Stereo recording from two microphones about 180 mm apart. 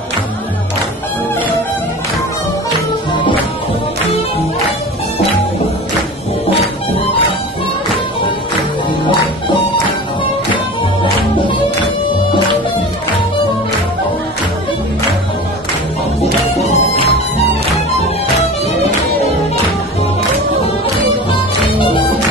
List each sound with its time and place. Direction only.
16.2 s music: 35° left (ahead or behind)